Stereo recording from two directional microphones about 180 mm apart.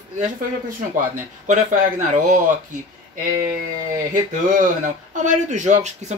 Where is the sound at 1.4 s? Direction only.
45° right (ahead or behind).